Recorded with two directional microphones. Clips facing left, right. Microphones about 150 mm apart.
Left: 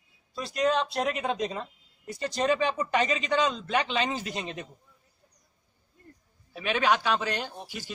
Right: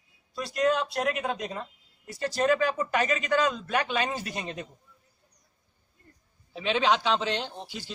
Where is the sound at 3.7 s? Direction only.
10° right (ahead or behind).